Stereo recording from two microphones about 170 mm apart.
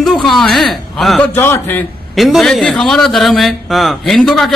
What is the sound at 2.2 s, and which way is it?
A man's voice, centre (ahead or behind).